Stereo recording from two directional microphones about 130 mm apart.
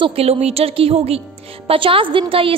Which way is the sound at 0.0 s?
50° right (ahead or behind).